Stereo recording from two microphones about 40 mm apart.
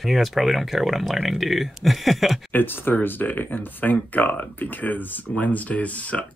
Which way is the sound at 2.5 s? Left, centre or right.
Left.